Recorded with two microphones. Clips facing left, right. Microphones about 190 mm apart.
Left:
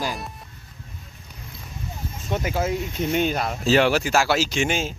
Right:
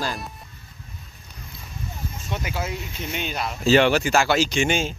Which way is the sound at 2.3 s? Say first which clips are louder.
Left 6 dB; 45° left (ahead or behind).